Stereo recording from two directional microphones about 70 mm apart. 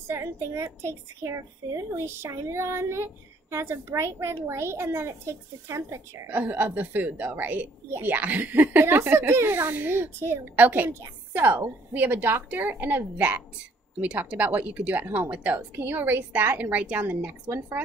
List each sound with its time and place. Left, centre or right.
0.1 s a woman's voice: right
6.2 s a woman's voice: right